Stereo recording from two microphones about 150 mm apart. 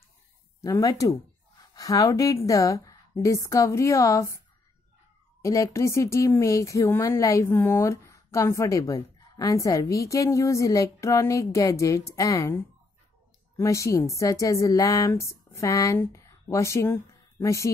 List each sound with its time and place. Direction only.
0.6 s speech: 20° left (ahead or behind)
5.4 s a woman's voice: 20° left (ahead or behind)